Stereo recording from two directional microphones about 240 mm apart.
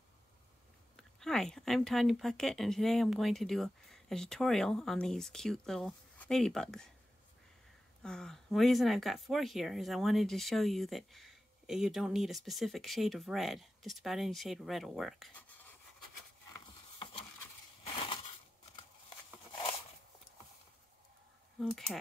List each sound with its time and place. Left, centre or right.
0.9 s speech: centre
8.0 s speech: centre
16.5 s a sound: left
17.8 s crushing: left
21.5 s speech: centre